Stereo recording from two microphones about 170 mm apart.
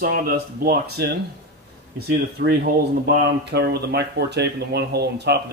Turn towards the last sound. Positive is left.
turn(degrees=-75)  # may be behind; listen again after turning